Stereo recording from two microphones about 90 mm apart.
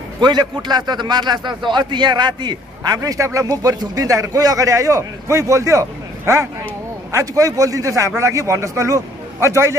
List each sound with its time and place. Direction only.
0.2 s a man's voice: 55° right (ahead or behind)
3.0 s speech: 35° right (ahead or behind)